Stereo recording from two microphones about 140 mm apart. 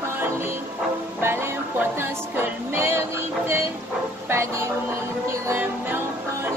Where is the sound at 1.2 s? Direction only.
15° right (ahead or behind).